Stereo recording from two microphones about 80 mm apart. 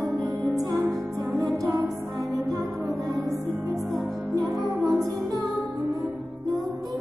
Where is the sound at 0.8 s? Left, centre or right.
Centre.